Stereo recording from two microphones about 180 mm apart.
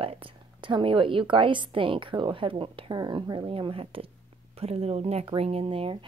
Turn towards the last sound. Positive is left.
turn(degrees=-30)  # may be behind; listen again after turning